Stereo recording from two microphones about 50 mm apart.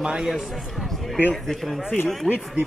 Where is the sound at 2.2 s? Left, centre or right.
Right.